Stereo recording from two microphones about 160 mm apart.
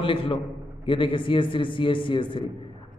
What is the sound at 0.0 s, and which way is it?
A man's voice, 35° left (ahead or behind).